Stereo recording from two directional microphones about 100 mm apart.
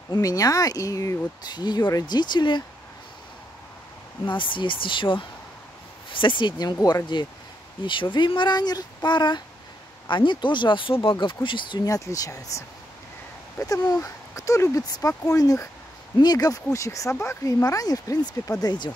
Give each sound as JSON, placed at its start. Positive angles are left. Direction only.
{"t": 0.1, "sound": "speech", "side_deg": 35}
{"t": 4.3, "sound": "speech", "side_deg": 55}
{"t": 7.8, "sound": "speech", "side_deg": 55}
{"t": 11.9, "sound": "speech", "side_deg": 35}